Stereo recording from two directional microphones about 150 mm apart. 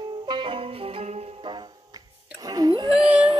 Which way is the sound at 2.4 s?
25° right (ahead or behind).